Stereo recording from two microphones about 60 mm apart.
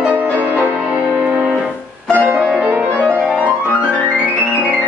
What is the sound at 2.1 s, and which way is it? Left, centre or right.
Music, right.